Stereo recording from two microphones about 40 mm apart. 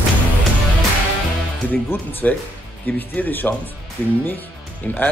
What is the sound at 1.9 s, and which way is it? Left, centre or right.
Speech, left.